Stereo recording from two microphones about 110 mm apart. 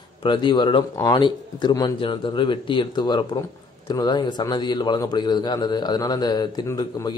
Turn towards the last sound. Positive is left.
turn(degrees=35)  # may be behind; listen again after turning